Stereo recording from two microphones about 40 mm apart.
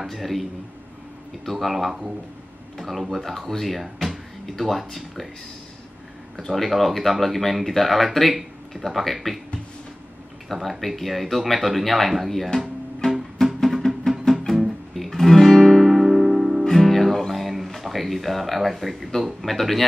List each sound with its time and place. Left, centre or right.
0.0 s speech: centre
6.3 s speech: centre
10.5 s speech: centre
13.0 s music: centre
13.6 s music: centre
14.5 s guitar: centre
16.8 s music: centre
17.6 s speech: centre